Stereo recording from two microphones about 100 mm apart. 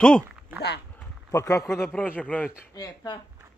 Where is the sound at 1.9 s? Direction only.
15° left (ahead or behind).